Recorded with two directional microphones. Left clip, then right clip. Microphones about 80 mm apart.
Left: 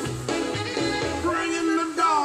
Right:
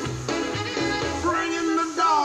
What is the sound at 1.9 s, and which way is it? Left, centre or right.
Music, right.